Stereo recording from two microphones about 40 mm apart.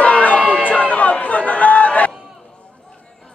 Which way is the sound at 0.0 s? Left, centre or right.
Left.